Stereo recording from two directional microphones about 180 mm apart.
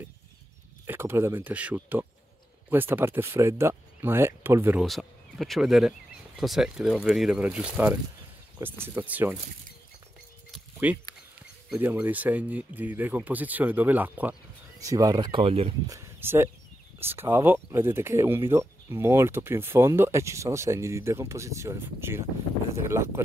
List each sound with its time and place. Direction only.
0.8 s speech: 15° right (ahead or behind)
4.8 s speech: centre (ahead or behind)
10.5 s a sound: 10° right (ahead or behind)
11.7 s speech: 10° right (ahead or behind); by 15.7 s 30° right (ahead or behind)
15.9 s speech: 15° right (ahead or behind)